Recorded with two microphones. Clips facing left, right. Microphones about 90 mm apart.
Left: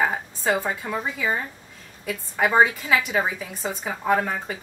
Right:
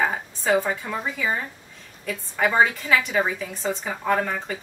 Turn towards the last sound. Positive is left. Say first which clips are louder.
# left 1 dB
turn(degrees=10)  # may be behind; listen again after turning